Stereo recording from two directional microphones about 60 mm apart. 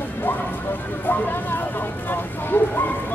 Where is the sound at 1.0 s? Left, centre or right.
Left.